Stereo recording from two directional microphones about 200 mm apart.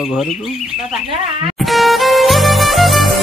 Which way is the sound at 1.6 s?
Centre (ahead or behind).